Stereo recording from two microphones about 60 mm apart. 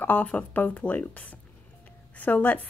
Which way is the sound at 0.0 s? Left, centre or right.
Left.